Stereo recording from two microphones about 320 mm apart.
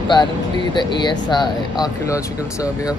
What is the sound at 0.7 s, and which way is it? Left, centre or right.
Speech, centre.